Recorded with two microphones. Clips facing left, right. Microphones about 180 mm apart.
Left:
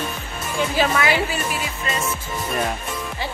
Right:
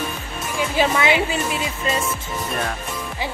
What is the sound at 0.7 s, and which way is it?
Speech, 20° right (ahead or behind).